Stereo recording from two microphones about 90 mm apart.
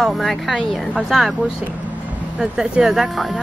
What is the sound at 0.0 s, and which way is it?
Speech, centre (ahead or behind).